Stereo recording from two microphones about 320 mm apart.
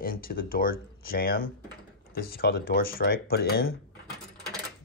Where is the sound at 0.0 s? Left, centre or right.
Left.